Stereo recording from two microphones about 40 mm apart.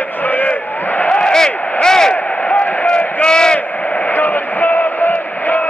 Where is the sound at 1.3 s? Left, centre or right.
Centre.